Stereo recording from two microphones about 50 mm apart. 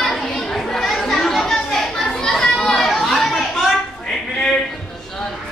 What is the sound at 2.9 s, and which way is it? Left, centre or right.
Chatter, centre.